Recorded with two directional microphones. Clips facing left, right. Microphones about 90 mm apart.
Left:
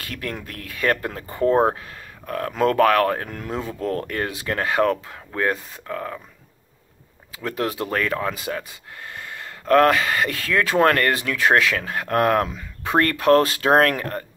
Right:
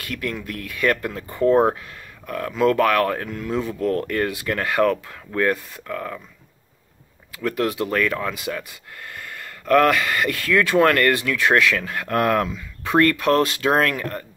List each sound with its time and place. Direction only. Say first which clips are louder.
0.0 s speech: right 2 dB; 35° left (ahead or behind)
7.3 s speech: right 3 dB; 25° left (ahead or behind)